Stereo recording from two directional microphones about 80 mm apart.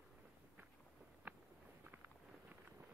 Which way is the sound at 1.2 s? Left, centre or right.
Right.